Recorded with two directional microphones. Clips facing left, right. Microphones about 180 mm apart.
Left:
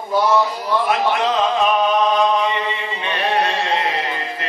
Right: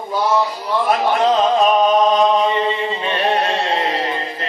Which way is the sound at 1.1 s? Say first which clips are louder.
Right 3 dB; 35° right (ahead or behind).